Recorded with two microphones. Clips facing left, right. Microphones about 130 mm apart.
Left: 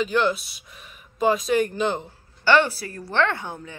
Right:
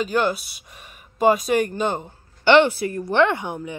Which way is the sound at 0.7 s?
50° right (ahead or behind).